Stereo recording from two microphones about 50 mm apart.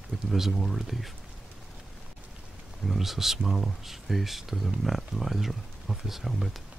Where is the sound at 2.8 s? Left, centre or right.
Centre.